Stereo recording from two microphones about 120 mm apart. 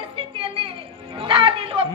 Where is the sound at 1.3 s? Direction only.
45° right (ahead or behind).